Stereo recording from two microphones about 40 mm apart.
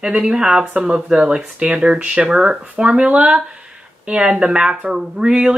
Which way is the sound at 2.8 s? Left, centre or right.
Right.